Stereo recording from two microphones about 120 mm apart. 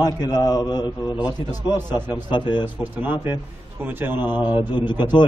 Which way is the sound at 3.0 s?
15° right (ahead or behind).